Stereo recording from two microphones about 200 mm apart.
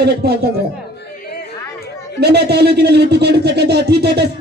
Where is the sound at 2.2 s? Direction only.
55° right (ahead or behind).